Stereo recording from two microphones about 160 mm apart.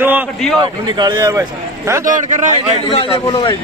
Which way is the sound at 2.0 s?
55° right (ahead or behind).